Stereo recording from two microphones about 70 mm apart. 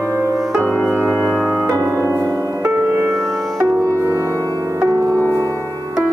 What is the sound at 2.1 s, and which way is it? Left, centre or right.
Music, left.